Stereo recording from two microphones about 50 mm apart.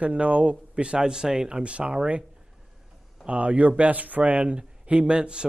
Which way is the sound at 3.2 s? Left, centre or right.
Right.